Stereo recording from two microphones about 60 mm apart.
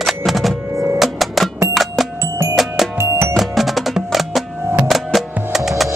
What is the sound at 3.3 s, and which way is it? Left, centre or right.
Music, centre.